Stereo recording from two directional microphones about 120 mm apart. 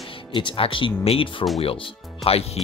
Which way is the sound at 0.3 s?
45° left (ahead or behind).